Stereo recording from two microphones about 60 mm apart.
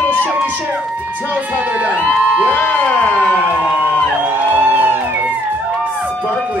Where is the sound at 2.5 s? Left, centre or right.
Left.